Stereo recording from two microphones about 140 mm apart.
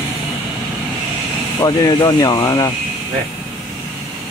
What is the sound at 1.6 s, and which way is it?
Speech, 25° left (ahead or behind).